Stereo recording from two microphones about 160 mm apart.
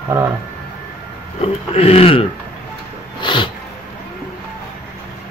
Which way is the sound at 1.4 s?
40° left (ahead or behind).